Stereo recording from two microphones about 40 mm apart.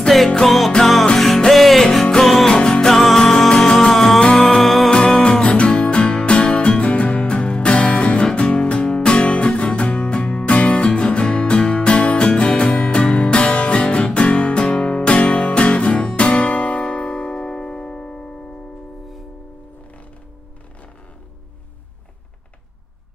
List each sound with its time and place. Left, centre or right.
1.1 s music: centre; by 2.9 s left
2.9 s music: centre
3.9 s music: centre
4.2 s music: left
5.2 s music: left